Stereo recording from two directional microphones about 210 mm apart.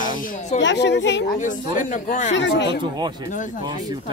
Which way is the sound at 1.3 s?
40° left (ahead or behind).